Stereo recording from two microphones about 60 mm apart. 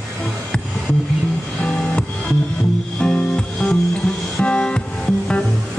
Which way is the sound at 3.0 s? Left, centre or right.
Centre.